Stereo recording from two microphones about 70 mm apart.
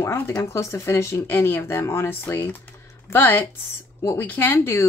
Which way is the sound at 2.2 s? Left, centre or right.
Left.